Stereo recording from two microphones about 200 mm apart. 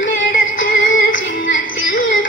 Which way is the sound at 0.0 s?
75° left (ahead or behind).